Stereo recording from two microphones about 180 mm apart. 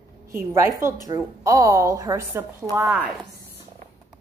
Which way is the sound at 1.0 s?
15° right (ahead or behind).